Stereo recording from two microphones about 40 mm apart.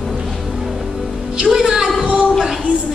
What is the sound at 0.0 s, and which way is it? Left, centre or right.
Music, centre.